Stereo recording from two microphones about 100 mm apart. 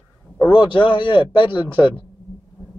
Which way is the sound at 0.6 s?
55° left (ahead or behind).